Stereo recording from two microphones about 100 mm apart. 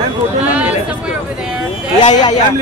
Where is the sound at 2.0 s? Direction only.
45° left (ahead or behind).